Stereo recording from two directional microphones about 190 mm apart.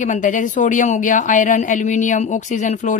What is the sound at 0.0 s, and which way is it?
A woman's voice, 40° left (ahead or behind).